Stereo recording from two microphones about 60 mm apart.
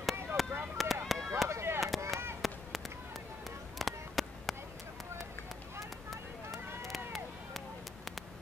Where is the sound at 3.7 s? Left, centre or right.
Centre.